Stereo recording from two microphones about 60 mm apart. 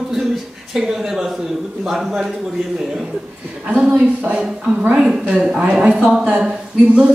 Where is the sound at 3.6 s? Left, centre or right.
Centre.